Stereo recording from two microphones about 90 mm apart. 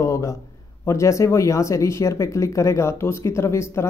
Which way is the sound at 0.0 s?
35° left (ahead or behind).